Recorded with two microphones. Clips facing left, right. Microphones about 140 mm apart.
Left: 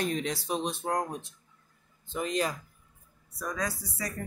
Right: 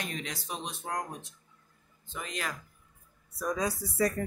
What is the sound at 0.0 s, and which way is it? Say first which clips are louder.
Speech: left 8 dB; 35° left (ahead or behind).